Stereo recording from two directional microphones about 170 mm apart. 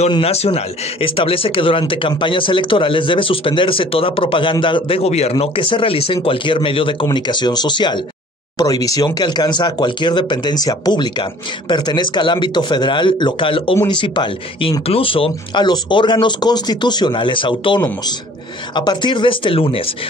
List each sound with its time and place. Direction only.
0.1 s a man's voice: 35° left (ahead or behind)